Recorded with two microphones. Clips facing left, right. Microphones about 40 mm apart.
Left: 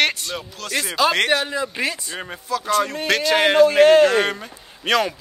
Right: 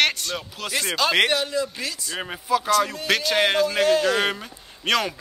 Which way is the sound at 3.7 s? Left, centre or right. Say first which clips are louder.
Left 7 dB; left.